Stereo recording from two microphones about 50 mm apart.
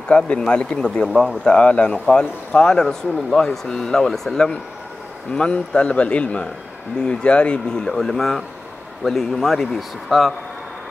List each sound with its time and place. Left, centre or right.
0.1 s a man's voice: left
1.4 s a man's voice: centre